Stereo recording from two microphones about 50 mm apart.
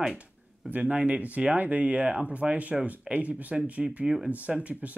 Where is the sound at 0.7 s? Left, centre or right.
Right.